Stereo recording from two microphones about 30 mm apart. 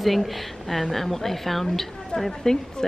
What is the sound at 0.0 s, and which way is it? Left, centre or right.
Speech, centre.